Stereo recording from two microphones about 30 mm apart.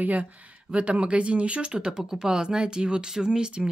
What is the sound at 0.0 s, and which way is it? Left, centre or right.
Speech, right.